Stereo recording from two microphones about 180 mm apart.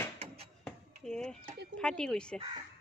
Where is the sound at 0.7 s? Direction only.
5° left (ahead or behind).